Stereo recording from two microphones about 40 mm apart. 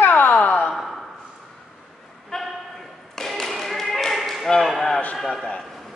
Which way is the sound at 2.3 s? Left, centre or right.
Centre.